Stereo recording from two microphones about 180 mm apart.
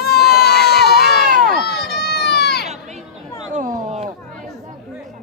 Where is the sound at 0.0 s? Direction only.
60° left (ahead or behind).